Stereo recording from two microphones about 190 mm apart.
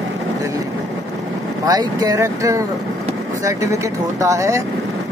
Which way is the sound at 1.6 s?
20° right (ahead or behind).